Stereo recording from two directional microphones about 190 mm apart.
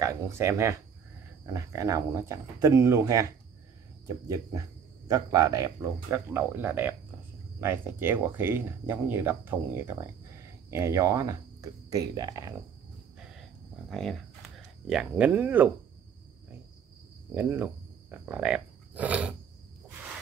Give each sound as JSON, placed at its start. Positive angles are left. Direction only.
{"t": 0.0, "sound": "speech", "side_deg": -15}
{"t": 4.3, "sound": "speech", "side_deg": -15}
{"t": 13.2, "sound": "a sound", "side_deg": 0}
{"t": 14.9, "sound": "speech", "side_deg": -5}
{"t": 17.3, "sound": "speech", "side_deg": -10}
{"t": 18.1, "sound": "wild animals", "side_deg": -10}